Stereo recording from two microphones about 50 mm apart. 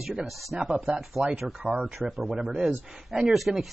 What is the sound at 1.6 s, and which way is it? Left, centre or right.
Speech, centre.